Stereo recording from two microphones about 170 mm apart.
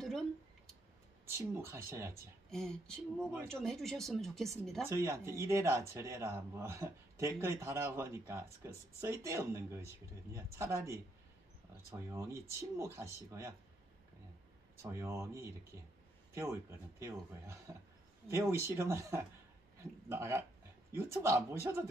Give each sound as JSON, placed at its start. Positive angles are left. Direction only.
{"t": 1.3, "sound": "speech", "side_deg": -15}
{"t": 2.5, "sound": "speech", "side_deg": 5}
{"t": 4.8, "sound": "speech", "side_deg": -15}
{"t": 12.1, "sound": "speech", "side_deg": -15}
{"t": 14.8, "sound": "speech", "side_deg": -15}
{"t": 17.0, "sound": "speech", "side_deg": -20}